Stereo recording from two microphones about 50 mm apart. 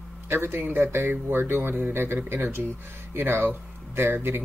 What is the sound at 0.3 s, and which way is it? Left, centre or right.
Speech, right.